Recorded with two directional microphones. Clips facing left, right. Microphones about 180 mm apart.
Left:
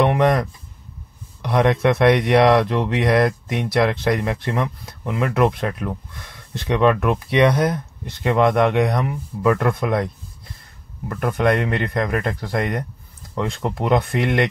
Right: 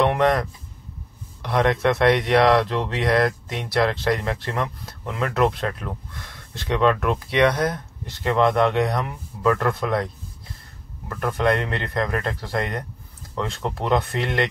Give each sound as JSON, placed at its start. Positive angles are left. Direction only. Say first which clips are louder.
{"t": 0.0, "sound": "a sound", "louder": "left 2 dB", "side_deg": 15}
{"t": 1.4, "sound": "speech", "louder": "left 3 dB", "side_deg": 20}
{"t": 11.1, "sound": "speech", "louder": "left 2 dB", "side_deg": 15}